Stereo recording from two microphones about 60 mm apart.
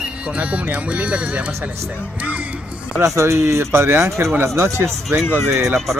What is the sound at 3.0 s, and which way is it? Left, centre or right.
Speech, right.